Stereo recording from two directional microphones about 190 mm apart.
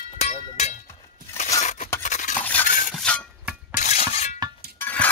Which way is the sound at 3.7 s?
40° left (ahead or behind).